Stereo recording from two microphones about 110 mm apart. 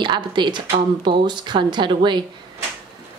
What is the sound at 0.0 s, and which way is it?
Speech, 45° right (ahead or behind).